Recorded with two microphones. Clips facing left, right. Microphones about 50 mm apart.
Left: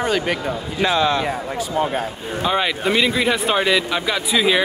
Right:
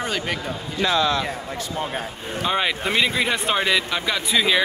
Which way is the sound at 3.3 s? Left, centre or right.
Centre.